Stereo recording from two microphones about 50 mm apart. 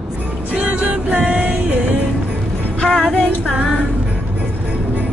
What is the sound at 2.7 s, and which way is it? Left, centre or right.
Music, centre.